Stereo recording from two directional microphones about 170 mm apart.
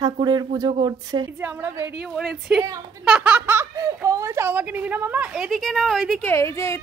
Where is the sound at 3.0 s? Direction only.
5° right (ahead or behind).